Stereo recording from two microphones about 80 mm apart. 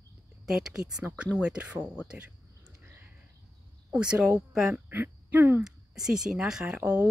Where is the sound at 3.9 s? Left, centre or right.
Centre.